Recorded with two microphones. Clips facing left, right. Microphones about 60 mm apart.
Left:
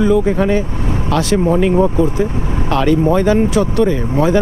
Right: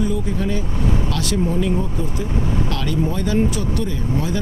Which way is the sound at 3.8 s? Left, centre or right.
Left.